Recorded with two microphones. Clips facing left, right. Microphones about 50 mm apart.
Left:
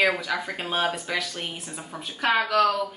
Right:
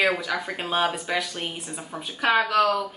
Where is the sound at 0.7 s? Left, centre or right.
Right.